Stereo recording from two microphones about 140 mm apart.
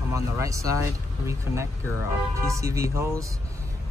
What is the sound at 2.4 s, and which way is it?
Speech, 20° right (ahead or behind).